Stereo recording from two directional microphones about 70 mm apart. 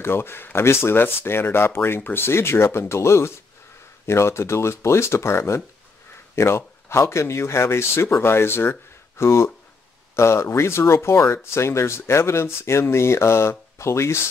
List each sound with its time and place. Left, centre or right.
0.0 s speech: left